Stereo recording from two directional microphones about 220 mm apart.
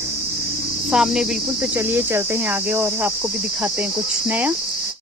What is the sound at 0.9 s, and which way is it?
Speech, 5° right (ahead or behind).